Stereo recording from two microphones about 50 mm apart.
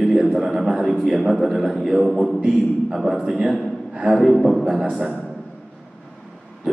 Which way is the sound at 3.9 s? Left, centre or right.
Centre.